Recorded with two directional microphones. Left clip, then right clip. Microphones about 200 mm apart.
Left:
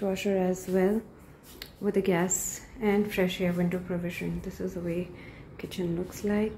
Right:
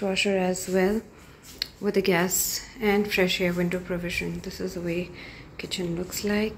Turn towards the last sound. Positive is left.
turn(degrees=0)  # may be behind; listen again after turning